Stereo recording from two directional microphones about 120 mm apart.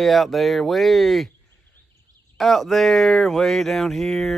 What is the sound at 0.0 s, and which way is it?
Speech, centre (ahead or behind).